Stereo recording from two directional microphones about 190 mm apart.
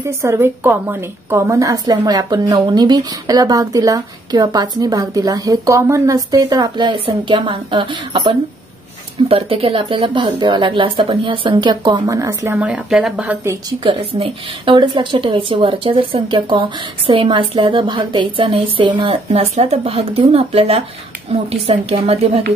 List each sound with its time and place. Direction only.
0.0 s a woman's voice: 15° right (ahead or behind)
13.8 s a woman's voice: 30° right (ahead or behind)